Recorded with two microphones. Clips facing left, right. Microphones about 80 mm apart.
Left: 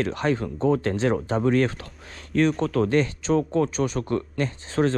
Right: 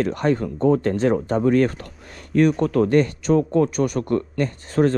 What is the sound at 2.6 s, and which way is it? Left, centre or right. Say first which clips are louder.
Speech: right 4 dB; right.